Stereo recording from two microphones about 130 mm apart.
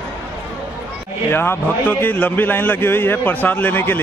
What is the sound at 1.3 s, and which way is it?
A man's voice, 15° left (ahead or behind).